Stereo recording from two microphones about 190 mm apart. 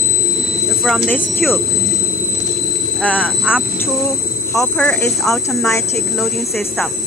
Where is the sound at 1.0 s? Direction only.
10° left (ahead or behind).